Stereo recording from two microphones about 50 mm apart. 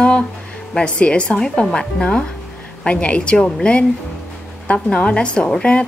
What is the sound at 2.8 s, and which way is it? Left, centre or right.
Speech, left.